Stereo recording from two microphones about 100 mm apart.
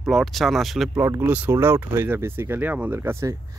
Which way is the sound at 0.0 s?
Centre (ahead or behind).